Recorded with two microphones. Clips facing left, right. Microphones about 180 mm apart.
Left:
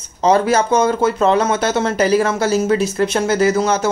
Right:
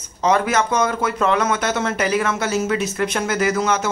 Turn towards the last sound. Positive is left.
turn(degrees=35)  # may be behind; listen again after turning